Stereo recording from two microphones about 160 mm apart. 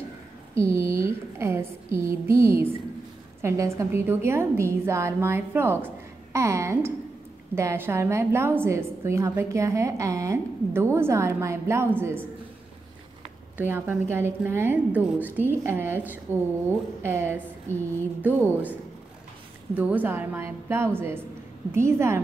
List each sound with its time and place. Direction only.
0.6 s a woman's voice: 20° right (ahead or behind)
13.6 s a woman's voice: 15° right (ahead or behind)